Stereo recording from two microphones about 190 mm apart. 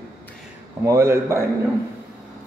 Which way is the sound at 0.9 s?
15° right (ahead or behind).